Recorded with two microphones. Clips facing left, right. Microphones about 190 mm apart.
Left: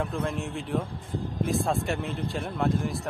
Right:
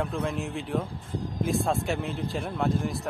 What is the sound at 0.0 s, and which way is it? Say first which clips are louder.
A man's voice: even; centre (ahead or behind).